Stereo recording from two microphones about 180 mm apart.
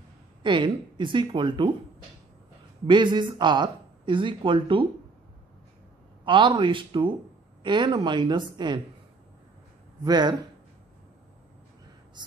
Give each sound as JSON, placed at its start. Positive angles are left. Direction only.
{"t": 0.4, "sound": "speech", "side_deg": -25}
{"t": 2.9, "sound": "speech", "side_deg": -25}
{"t": 6.2, "sound": "speech", "side_deg": -25}
{"t": 10.0, "sound": "speech", "side_deg": -25}
{"t": 12.2, "sound": "speech", "side_deg": -25}